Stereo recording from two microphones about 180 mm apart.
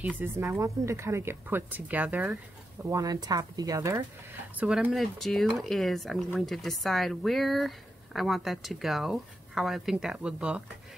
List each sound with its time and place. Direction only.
0.2 s speech: 15° right (ahead or behind)
4.6 s speech: 5° right (ahead or behind)